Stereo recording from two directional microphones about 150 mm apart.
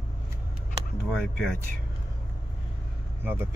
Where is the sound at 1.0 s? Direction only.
5° left (ahead or behind).